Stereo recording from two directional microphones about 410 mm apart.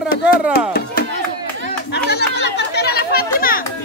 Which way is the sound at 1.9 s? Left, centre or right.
Left.